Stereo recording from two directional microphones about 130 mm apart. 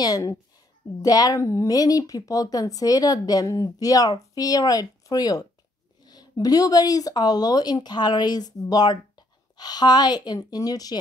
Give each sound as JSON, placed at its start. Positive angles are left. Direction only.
{"t": 0.0, "sound": "speech", "side_deg": 25}